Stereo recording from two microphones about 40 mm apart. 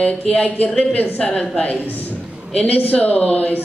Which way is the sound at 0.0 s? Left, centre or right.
Left.